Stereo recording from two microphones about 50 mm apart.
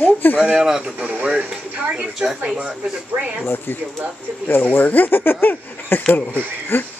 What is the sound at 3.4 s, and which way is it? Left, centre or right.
Speech, left.